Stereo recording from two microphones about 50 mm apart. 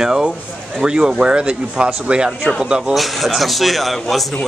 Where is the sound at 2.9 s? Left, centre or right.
Centre.